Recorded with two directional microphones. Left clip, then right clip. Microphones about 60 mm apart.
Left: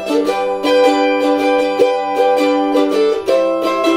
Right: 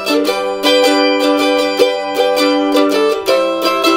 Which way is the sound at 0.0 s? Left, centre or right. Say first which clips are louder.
Right 1 dB; right.